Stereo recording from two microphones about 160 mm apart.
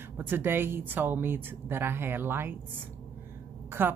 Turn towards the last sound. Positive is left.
turn(degrees=-15)  # may be behind; listen again after turning